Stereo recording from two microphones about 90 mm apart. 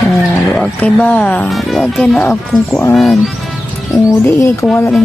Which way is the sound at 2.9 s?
Centre (ahead or behind).